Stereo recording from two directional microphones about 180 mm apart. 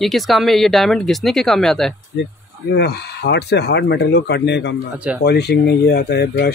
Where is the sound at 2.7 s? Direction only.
65° left (ahead or behind).